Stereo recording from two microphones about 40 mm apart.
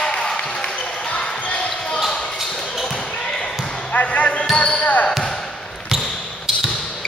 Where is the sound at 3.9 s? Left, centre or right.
Left.